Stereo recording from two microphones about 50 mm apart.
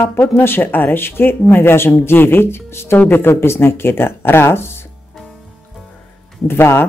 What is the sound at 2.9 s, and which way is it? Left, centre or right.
Speech, left.